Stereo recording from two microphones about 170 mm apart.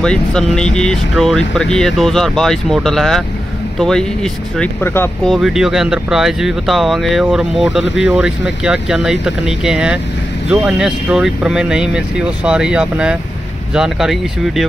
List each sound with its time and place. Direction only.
0.0 s speech: 5° left (ahead or behind)
5.2 s speech: centre (ahead or behind)